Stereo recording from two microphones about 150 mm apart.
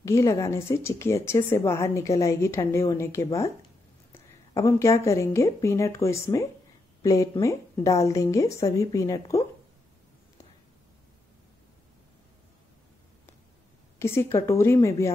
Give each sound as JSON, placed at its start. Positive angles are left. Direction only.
{"t": 0.0, "sound": "a woman's voice", "side_deg": 20}
{"t": 13.9, "sound": "a woman's voice", "side_deg": 15}